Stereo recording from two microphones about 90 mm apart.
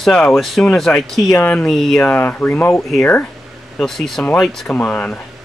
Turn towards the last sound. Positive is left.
turn(degrees=10)  # may be behind; listen again after turning